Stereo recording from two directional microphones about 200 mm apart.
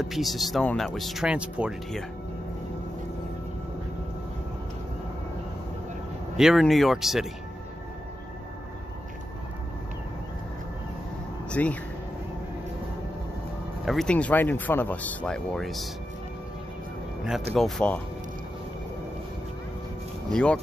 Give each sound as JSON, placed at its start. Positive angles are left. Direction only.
{"t": 0.0, "sound": "speech", "side_deg": 0}
{"t": 6.3, "sound": "speech", "side_deg": 0}
{"t": 11.5, "sound": "speech", "side_deg": 5}
{"t": 13.8, "sound": "speech", "side_deg": 5}
{"t": 17.6, "sound": "speech", "side_deg": 0}
{"t": 20.3, "sound": "speech", "side_deg": 5}